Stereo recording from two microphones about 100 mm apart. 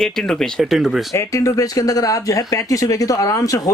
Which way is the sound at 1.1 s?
30° left (ahead or behind).